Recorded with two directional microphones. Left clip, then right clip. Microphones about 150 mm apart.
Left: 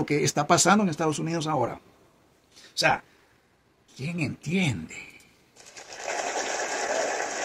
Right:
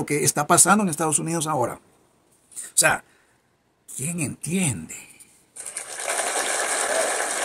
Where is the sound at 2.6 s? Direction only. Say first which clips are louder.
Right 3 dB; 25° right (ahead or behind).